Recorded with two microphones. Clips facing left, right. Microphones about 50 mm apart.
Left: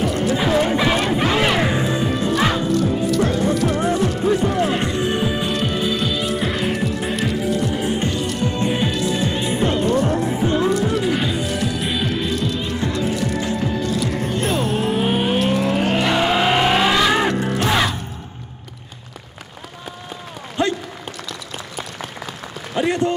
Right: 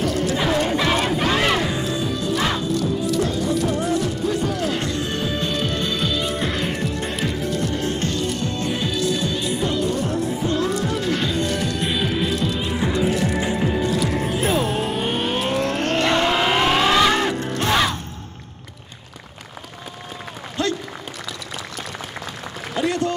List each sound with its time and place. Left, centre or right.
0.0 s music: centre
0.4 s music: centre
0.7 s horse: centre
1.1 s crowd: centre
1.6 s music: left
2.3 s music: centre
2.6 s music: left; by 17.9 s centre
20.6 s applause: centre
22.8 s a sound: left